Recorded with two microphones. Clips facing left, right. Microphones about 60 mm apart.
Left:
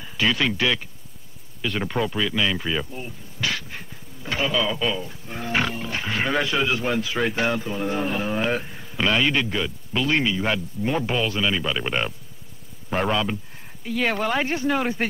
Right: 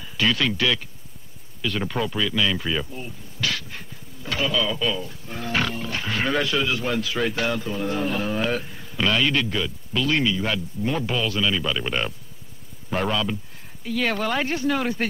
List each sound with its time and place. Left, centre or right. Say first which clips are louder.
0.0 s speech: even; centre